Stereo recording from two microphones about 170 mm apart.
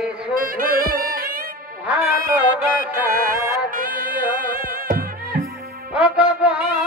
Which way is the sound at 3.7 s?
55° right (ahead or behind).